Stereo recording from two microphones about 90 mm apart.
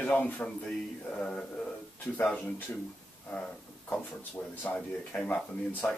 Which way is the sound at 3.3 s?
10° left (ahead or behind).